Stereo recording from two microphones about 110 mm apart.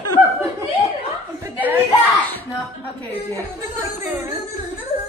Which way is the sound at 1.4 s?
15° right (ahead or behind).